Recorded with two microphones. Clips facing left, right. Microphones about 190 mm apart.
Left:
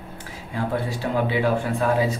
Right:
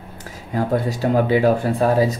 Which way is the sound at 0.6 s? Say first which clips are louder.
Right 5 dB; 40° right (ahead or behind).